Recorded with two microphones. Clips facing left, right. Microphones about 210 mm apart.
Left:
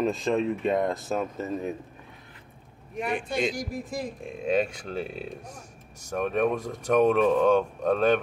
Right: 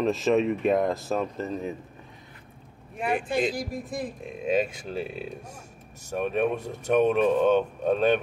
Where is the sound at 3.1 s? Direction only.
35° right (ahead or behind).